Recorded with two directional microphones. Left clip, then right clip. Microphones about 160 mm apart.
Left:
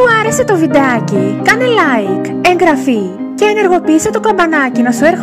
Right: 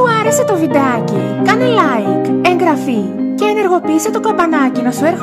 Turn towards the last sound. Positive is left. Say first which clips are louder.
# left 4 dB
turn(degrees=15)  # may be behind; listen again after turning